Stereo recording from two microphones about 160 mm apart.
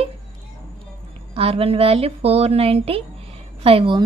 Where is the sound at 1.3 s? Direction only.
35° right (ahead or behind).